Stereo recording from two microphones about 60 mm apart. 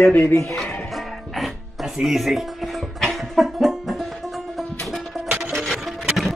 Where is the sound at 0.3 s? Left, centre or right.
Left.